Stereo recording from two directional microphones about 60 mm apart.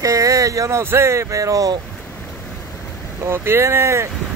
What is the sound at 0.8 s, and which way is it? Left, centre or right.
Speech, right.